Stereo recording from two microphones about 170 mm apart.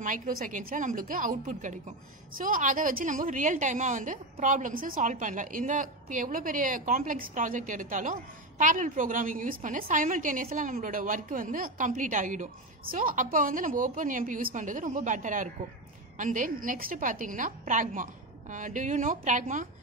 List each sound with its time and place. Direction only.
0.0 s a woman's voice: 55° right (ahead or behind)